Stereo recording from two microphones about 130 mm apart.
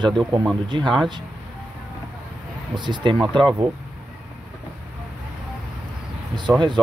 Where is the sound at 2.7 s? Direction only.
35° right (ahead or behind).